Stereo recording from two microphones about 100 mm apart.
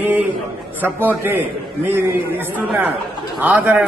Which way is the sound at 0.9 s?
20° right (ahead or behind).